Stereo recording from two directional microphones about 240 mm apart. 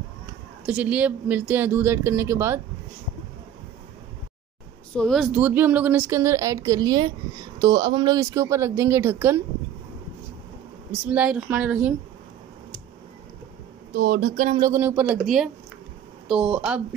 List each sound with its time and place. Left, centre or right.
0.7 s speech: centre
4.9 s speech: centre
10.9 s speech: centre
13.9 s speech: right
14.6 s speech: centre